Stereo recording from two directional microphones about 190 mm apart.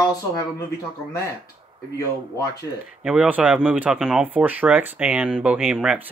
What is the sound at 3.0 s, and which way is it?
A man's voice, 5° right (ahead or behind).